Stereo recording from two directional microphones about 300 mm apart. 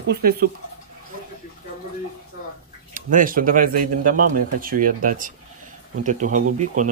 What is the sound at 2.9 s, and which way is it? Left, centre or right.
Speech, right.